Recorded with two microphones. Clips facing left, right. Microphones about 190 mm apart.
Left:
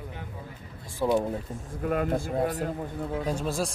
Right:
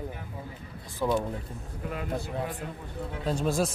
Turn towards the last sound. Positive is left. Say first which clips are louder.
# right 2 dB
turn(degrees=5)  # may be behind; listen again after turning